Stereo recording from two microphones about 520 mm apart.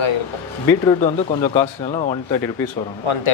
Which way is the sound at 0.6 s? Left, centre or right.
Centre.